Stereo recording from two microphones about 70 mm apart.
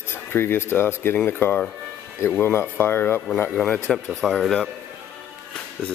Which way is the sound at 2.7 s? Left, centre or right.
Left.